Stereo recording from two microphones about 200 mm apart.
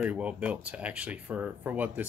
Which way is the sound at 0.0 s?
5° right (ahead or behind).